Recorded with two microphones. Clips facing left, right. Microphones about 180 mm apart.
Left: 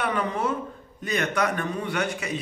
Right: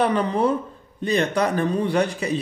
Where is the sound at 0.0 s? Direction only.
35° right (ahead or behind).